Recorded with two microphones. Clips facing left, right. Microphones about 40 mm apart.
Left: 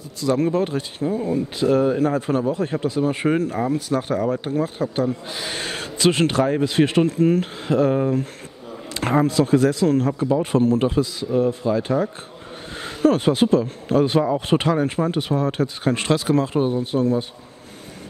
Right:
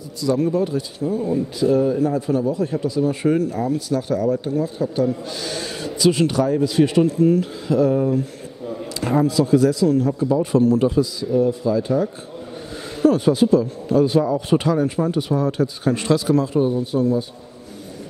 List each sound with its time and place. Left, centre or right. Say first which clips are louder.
0.2 s speech: even; left
1.7 s speech: even; left
5.3 s speech: right 1 dB; left
5.6 s a man's voice: right 1 dB; left